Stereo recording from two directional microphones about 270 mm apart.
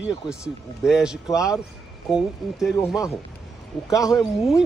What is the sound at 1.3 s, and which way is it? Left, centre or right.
Speech, centre.